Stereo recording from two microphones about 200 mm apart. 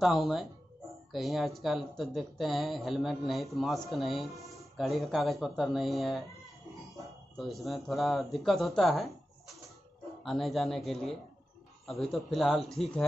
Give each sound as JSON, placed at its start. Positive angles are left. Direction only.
{"t": 0.0, "sound": "speech", "side_deg": 0}
{"t": 7.3, "sound": "speech", "side_deg": 0}